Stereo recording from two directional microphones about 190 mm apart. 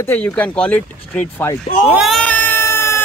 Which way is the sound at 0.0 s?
10° left (ahead or behind).